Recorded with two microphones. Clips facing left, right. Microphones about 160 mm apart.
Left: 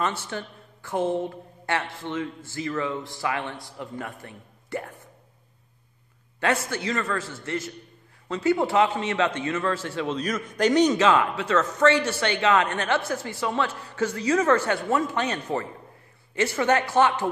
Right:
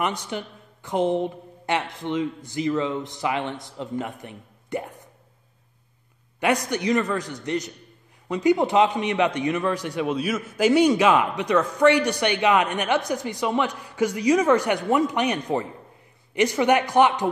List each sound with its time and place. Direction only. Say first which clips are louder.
0.0 s a man's voice: right 2 dB; 15° right (ahead or behind)
6.4 s a man's voice: right 3 dB; 15° right (ahead or behind)